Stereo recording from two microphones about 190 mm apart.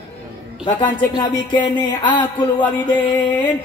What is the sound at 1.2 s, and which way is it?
A man's voice, 25° left (ahead or behind).